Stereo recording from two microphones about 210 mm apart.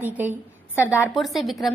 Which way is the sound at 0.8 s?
10° left (ahead or behind).